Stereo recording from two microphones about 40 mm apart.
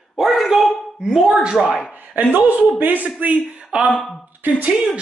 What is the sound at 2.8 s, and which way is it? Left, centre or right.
A man's voice, right.